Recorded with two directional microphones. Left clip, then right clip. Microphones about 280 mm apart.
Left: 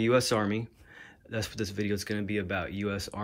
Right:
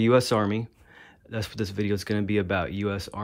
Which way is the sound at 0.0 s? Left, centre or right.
Centre.